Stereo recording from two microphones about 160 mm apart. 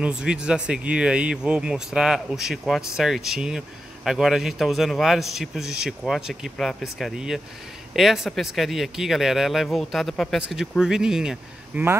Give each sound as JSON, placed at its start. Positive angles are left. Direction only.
{"t": 0.0, "sound": "speech", "side_deg": -5}